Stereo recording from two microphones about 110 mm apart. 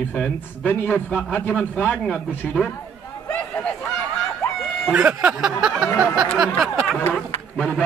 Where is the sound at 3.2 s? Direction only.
15° left (ahead or behind).